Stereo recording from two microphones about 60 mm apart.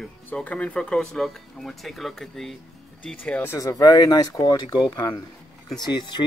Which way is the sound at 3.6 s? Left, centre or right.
Left.